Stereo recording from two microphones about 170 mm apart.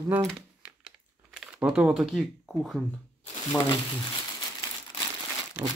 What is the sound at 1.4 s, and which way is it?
Speech, 5° right (ahead or behind).